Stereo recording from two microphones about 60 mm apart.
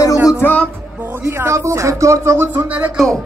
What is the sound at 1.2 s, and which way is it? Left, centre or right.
Speech, right.